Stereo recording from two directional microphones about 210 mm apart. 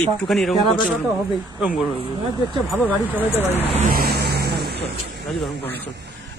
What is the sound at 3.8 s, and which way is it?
Vehicle, 45° right (ahead or behind).